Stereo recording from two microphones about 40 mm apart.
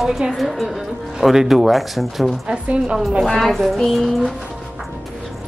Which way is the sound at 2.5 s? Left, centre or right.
Right.